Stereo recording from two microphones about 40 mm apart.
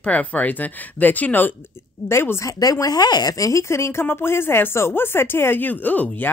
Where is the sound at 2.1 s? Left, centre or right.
Left.